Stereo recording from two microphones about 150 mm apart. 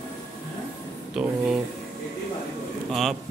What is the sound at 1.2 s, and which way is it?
Speech, 5° right (ahead or behind).